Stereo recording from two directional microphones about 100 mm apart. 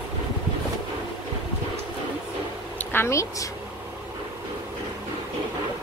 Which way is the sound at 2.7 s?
25° left (ahead or behind).